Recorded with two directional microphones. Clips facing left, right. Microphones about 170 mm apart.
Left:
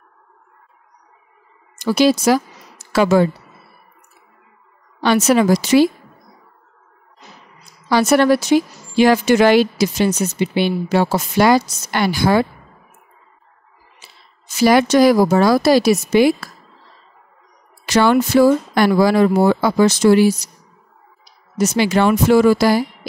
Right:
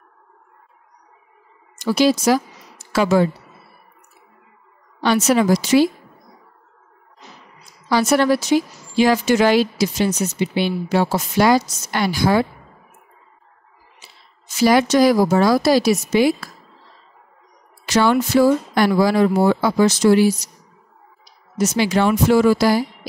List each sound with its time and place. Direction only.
1.8 s speech: 65° left (ahead or behind)
5.0 s speech: 65° left (ahead or behind)
7.9 s speech: 60° left (ahead or behind)
14.6 s speech: 65° left (ahead or behind)
17.8 s speech: 60° left (ahead or behind)
21.5 s speech: 65° left (ahead or behind)